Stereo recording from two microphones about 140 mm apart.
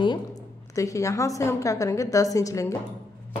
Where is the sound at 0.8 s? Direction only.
25° left (ahead or behind).